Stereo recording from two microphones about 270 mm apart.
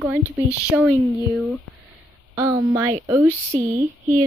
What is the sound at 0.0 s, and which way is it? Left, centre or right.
Speech, centre.